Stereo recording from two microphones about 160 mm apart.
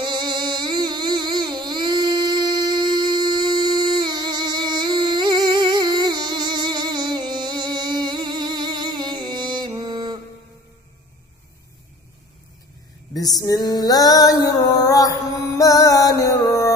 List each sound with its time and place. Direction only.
0.0 s music: 30° right (ahead or behind)
13.1 s music: 25° left (ahead or behind)